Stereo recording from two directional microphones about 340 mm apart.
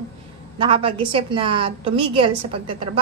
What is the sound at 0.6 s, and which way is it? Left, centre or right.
A woman's voice, centre.